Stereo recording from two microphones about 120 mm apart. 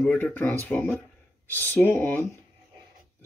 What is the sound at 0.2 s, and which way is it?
Speech, 15° left (ahead or behind).